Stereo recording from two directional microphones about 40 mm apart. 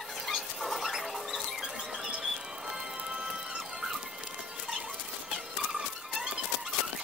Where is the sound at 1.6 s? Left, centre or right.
Centre.